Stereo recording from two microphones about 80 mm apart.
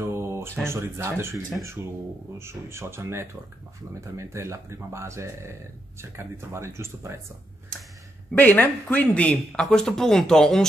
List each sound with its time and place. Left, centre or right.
0.0 s a sound: right
0.7 s speech: right
8.4 s speech: left